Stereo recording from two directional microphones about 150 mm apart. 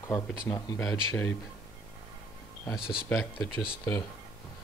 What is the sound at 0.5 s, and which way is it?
Speech, 15° left (ahead or behind).